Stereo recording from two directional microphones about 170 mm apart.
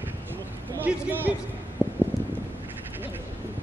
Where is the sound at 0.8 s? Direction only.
10° right (ahead or behind).